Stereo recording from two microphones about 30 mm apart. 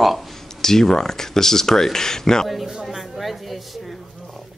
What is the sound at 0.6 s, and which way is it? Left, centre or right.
Speech, centre.